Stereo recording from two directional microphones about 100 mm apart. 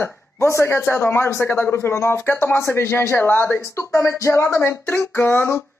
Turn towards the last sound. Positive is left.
turn(degrees=25)  # may be behind; listen again after turning